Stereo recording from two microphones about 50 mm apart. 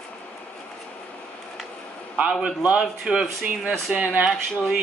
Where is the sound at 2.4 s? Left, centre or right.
Centre.